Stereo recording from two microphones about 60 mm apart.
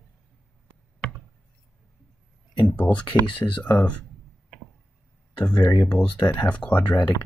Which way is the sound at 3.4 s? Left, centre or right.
Left.